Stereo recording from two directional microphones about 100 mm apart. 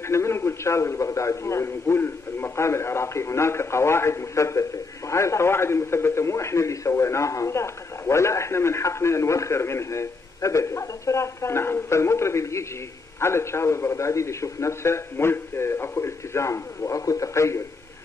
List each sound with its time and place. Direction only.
0.1 s a man's voice: 25° left (ahead or behind)